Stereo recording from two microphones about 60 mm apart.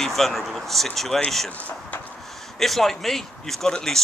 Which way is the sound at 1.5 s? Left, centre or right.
Left.